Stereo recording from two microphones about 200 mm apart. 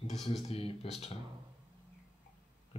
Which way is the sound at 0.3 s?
30° left (ahead or behind).